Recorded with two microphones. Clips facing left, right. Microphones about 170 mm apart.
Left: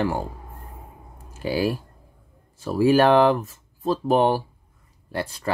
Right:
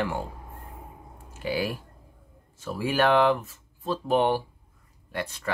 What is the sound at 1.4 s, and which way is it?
Speech, 35° left (ahead or behind).